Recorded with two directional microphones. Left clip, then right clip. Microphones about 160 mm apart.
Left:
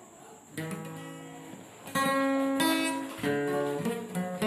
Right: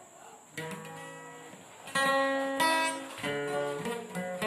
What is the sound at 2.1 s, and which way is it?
Music, 15° left (ahead or behind).